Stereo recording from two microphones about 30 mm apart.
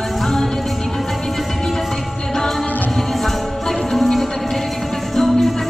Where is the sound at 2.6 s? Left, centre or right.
Left.